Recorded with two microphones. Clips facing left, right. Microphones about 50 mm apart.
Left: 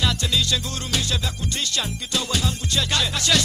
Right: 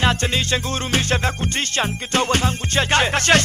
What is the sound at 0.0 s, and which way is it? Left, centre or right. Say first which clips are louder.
Music: right 4 dB; right.